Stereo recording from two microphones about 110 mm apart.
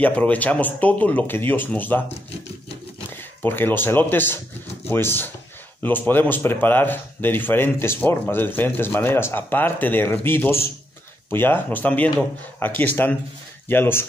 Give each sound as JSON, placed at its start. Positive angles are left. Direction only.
{"t": 0.0, "sound": "speech", "side_deg": 15}
{"t": 3.1, "sound": "speech", "side_deg": 20}